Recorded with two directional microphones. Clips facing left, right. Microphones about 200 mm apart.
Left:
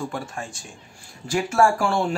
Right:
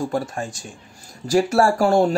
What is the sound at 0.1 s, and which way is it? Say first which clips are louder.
Speech: right 7 dB; 40° right (ahead or behind).